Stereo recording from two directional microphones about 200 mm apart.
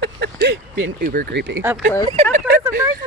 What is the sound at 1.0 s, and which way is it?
Speech, 45° right (ahead or behind).